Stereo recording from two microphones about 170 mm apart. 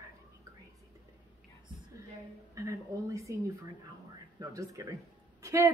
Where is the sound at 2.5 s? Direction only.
20° right (ahead or behind).